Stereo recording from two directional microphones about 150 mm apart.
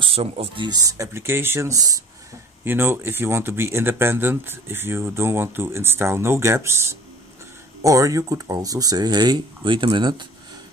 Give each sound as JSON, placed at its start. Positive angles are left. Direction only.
{"t": 0.0, "sound": "speech", "side_deg": -40}
{"t": 0.7, "sound": "speech", "side_deg": -25}